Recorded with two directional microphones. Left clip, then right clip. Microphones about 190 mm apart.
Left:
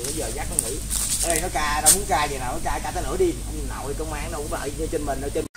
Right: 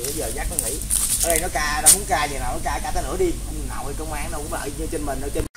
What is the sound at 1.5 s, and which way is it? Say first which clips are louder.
Speech: right 1 dB; 35° right (ahead or behind).